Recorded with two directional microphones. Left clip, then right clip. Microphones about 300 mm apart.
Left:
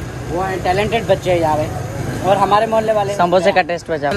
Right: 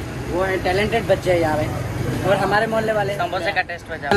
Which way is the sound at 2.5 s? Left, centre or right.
Left.